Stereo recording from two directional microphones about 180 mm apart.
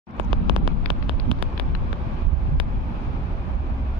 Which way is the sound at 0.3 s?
25° right (ahead or behind).